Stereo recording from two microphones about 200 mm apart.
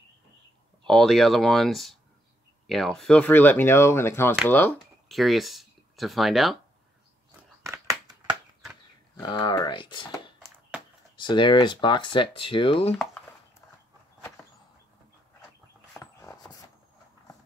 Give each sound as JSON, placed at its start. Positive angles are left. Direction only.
{"t": 0.8, "sound": "speech", "side_deg": 0}
{"t": 7.6, "sound": "a sound", "side_deg": -15}
{"t": 9.2, "sound": "speech", "side_deg": 25}
{"t": 16.0, "sound": "dog", "side_deg": 15}